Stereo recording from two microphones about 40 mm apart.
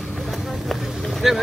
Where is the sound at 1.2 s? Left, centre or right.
Centre.